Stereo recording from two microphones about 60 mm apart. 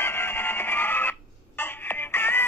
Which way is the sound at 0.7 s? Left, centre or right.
Left.